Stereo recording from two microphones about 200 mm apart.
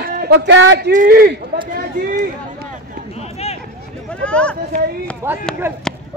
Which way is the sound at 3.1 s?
30° left (ahead or behind).